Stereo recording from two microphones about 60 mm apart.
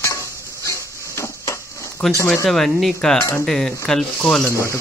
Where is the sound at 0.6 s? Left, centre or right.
Left.